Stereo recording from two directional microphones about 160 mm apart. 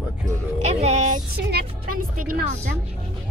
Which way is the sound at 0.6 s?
45° right (ahead or behind).